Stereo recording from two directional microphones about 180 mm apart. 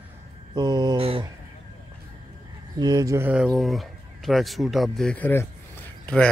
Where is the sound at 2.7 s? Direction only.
20° right (ahead or behind).